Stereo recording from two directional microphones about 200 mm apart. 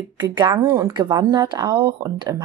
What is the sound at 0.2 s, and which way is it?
Speech, 20° right (ahead or behind).